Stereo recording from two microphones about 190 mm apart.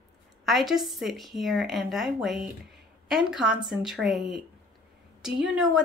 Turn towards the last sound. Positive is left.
turn(degrees=-5)  # may be behind; listen again after turning